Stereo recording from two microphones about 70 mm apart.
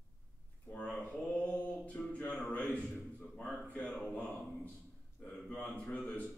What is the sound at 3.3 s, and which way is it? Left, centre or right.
Speech, centre.